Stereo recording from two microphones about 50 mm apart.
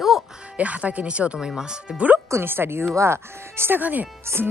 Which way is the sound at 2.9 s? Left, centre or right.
Right.